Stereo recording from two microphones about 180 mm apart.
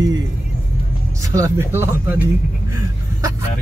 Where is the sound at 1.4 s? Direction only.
15° right (ahead or behind).